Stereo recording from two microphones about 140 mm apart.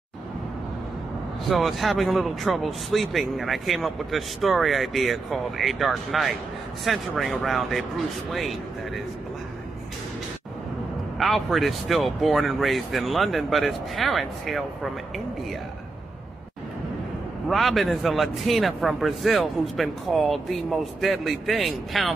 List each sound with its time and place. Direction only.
1.5 s a man's voice: centre (ahead or behind)
11.1 s a man's voice: centre (ahead or behind)
17.5 s a man's voice: centre (ahead or behind)